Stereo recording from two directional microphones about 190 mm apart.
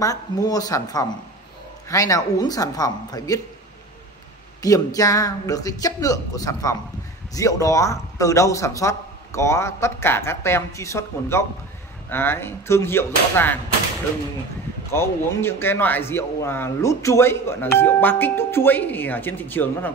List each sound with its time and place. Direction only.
0.0 s speech: 20° left (ahead or behind)
4.6 s a man's voice: 20° left (ahead or behind)
14.9 s a man's voice: 15° left (ahead or behind)